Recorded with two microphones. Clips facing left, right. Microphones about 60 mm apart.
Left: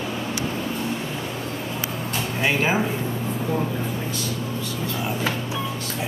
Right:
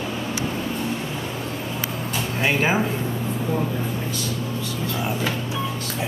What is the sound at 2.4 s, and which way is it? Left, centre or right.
Speech, centre.